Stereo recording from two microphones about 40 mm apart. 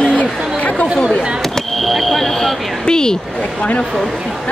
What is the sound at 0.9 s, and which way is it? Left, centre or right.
Speech, centre.